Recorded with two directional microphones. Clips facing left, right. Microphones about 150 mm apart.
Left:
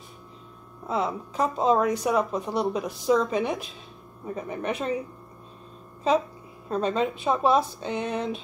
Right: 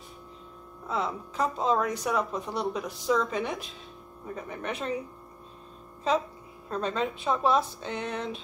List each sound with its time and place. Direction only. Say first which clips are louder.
0.8 s speech: left 4 dB; 15° left (ahead or behind)
6.7 s speech: left 4 dB; 15° left (ahead or behind)